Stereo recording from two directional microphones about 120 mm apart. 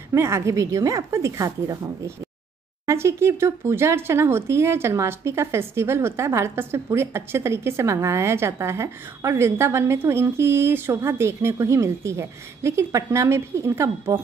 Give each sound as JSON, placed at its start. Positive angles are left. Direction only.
{"t": 0.1, "sound": "speech", "side_deg": -25}
{"t": 2.9, "sound": "speech", "side_deg": -25}